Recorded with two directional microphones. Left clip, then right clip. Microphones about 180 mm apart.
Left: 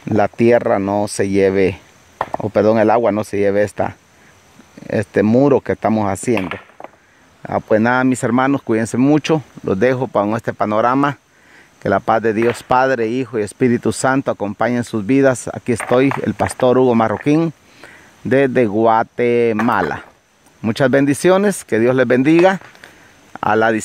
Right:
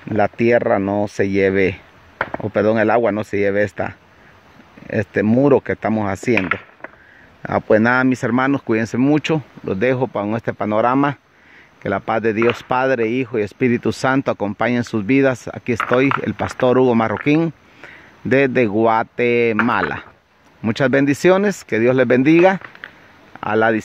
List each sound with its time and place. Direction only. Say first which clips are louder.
0.2 s speech: left 2 dB; 20° left (ahead or behind)
7.4 s speech: even; 10° left (ahead or behind)
20.6 s speech: left 2 dB; 15° left (ahead or behind)